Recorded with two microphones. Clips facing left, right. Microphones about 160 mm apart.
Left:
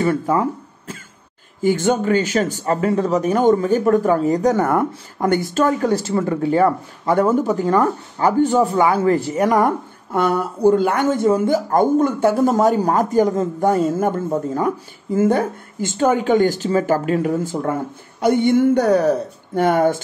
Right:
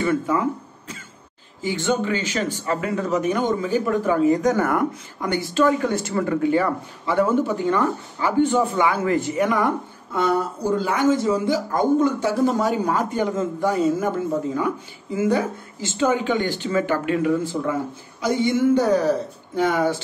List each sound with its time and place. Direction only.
0.0 s speech: 35° left (ahead or behind)
1.6 s speech: 50° left (ahead or behind); by 4.8 s 30° left (ahead or behind)
5.2 s speech: 50° left (ahead or behind)
10.1 s speech: 60° left (ahead or behind)
18.2 s a man's voice: 60° left (ahead or behind)